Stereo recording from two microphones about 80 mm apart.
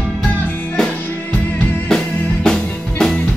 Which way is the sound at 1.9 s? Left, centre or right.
Centre.